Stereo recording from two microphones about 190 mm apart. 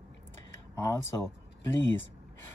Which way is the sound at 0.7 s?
15° left (ahead or behind).